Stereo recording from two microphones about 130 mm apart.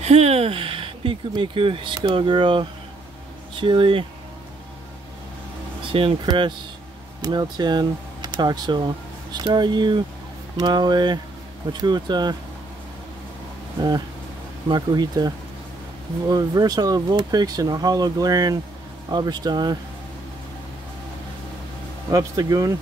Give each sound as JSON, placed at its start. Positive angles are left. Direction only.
{"t": 0.0, "sound": "speech", "side_deg": -55}
{"t": 5.8, "sound": "speech", "side_deg": -45}
{"t": 13.7, "sound": "speech", "side_deg": -35}
{"t": 22.1, "sound": "speech", "side_deg": -30}